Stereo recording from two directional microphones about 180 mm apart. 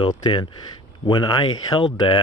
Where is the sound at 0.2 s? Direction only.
25° left (ahead or behind).